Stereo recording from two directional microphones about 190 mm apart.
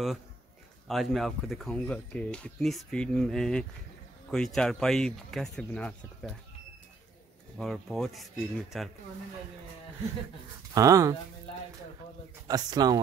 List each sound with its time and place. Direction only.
0.8 s speech: centre (ahead or behind)
7.5 s speech: centre (ahead or behind)
10.7 s speech: 15° right (ahead or behind)
12.4 s speech: 20° right (ahead or behind)